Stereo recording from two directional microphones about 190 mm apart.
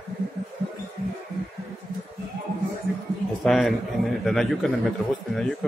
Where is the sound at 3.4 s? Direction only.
Centre (ahead or behind).